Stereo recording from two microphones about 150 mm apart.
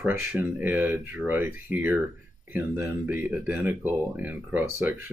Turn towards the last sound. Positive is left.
turn(degrees=-10)  # may be behind; listen again after turning